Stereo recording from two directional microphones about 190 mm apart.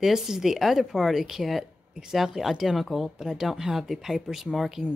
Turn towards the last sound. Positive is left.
turn(degrees=0)  # may be behind; listen again after turning